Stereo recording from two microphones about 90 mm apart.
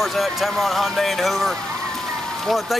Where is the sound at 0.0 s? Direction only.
Centre (ahead or behind).